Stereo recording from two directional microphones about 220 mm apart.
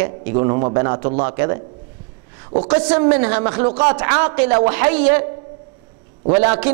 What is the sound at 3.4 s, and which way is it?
Speech, 30° right (ahead or behind).